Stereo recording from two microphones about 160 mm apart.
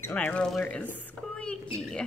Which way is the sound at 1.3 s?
5° left (ahead or behind).